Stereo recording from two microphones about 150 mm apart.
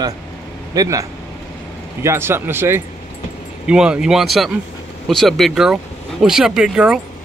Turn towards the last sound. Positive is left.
turn(degrees=-5)  # may be behind; listen again after turning